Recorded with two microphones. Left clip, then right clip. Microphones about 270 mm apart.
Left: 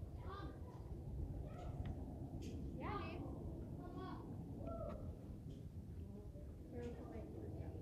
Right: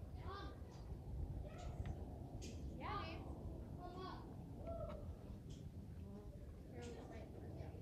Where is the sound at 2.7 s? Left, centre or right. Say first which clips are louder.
Even; right.